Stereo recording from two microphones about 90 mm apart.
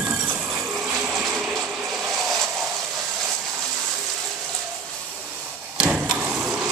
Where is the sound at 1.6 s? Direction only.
15° right (ahead or behind).